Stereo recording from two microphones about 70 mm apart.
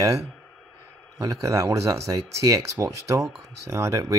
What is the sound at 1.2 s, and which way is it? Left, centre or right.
Speech, right.